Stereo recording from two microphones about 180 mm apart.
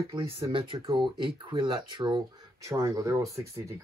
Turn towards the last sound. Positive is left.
turn(degrees=-15)  # may be behind; listen again after turning